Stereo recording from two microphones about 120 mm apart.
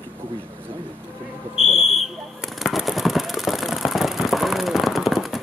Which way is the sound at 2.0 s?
Centre (ahead or behind).